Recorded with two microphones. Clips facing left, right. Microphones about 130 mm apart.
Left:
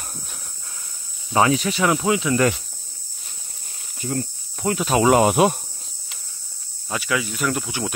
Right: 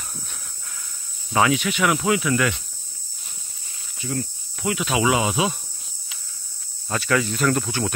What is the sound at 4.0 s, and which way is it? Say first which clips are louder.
Cricket: left 2 dB; 40° left (ahead or behind).